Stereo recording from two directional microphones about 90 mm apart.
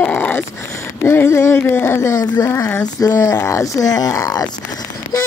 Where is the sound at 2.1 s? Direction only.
45° left (ahead or behind).